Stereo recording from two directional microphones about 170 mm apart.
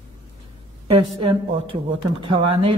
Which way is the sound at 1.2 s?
30° right (ahead or behind).